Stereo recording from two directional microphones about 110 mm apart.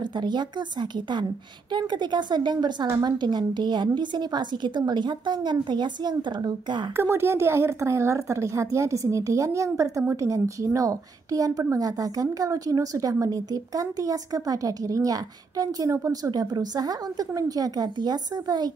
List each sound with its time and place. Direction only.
0.2 s a woman's voice: 45° right (ahead or behind)
7.0 s a woman's voice: 20° right (ahead or behind); by 18.7 s 40° right (ahead or behind)